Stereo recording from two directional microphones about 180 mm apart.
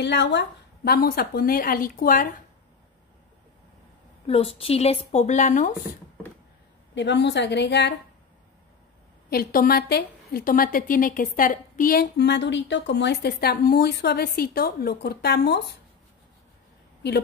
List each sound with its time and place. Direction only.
0.0 s a woman's voice: 75° left (ahead or behind); by 2.2 s 50° left (ahead or behind)
4.3 s speech: 30° left (ahead or behind)
7.0 s a woman's voice: 75° left (ahead or behind)
9.3 s a woman's voice: 55° left (ahead or behind)